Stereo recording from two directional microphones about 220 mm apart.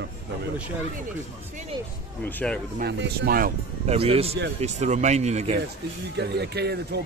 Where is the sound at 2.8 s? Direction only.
50° right (ahead or behind).